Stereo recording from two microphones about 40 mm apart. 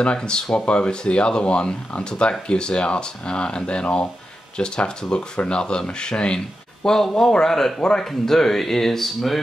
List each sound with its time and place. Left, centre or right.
0.0 s speech: left; by 9.4 s centre